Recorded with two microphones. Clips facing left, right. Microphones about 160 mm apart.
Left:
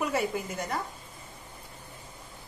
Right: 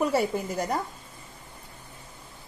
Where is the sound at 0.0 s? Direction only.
35° right (ahead or behind).